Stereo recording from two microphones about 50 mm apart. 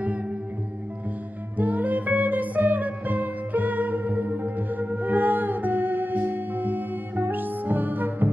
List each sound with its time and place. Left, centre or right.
1.6 s music: right